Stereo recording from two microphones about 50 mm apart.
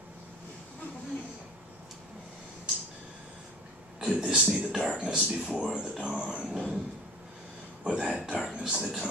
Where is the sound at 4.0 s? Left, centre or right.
Centre.